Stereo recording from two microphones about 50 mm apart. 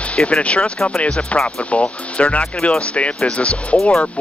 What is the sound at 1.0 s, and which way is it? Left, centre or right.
Speech, left.